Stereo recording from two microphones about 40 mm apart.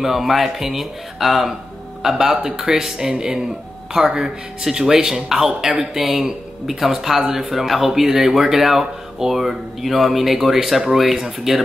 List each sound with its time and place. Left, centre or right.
0.0 s speech: centre